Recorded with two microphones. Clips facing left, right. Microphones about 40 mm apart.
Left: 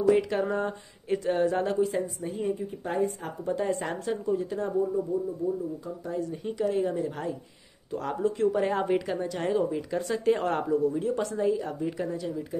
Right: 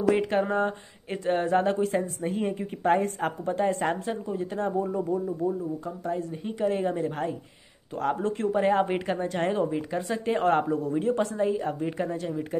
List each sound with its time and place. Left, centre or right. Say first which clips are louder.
0.1 s a woman's voice: right 2 dB; right
3.4 s speech: right 2 dB; right
4.9 s speech: right 1 dB; right
6.4 s speech: right 1 dB; right
9.7 s speech: even; right
10.3 s speech: right 6 dB; right